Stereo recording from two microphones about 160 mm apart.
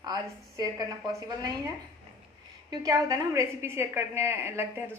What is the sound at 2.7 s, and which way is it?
A woman's voice, 20° right (ahead or behind).